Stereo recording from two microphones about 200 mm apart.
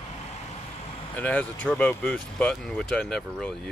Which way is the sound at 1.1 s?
5° left (ahead or behind).